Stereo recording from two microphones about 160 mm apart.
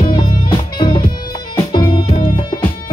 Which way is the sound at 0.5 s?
30° left (ahead or behind).